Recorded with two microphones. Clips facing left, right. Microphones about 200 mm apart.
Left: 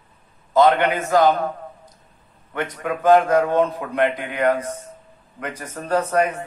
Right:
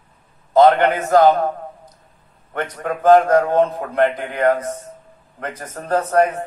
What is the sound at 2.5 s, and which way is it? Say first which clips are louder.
A man's voice: right 1 dB; 45° right (ahead or behind).